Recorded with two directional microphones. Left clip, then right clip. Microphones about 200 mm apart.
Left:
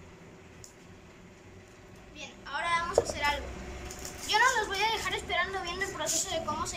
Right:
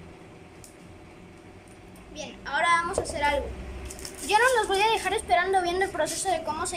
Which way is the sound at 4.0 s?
40° right (ahead or behind).